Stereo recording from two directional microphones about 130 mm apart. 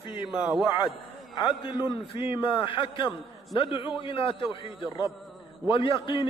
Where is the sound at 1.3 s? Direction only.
35° left (ahead or behind).